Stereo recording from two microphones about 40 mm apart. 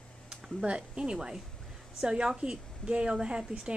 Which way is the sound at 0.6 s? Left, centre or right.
Right.